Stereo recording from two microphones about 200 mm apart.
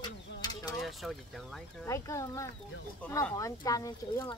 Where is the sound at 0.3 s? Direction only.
60° left (ahead or behind).